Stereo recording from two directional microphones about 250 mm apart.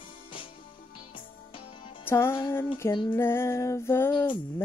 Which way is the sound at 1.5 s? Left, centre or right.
Centre.